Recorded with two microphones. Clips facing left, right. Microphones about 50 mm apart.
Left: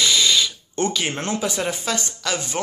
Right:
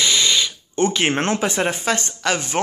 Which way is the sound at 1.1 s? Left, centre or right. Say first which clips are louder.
Right 5 dB; right.